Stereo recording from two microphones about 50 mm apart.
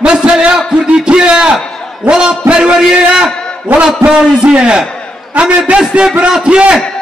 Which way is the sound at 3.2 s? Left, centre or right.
Right.